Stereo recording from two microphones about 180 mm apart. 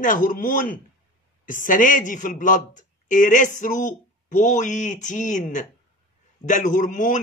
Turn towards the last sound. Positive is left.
turn(degrees=45)  # may be behind; listen again after turning